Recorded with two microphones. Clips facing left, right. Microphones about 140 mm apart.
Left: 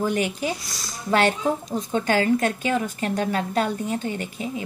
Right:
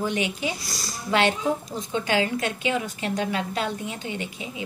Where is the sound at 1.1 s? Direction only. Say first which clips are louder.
Left 2 dB; 40° left (ahead or behind).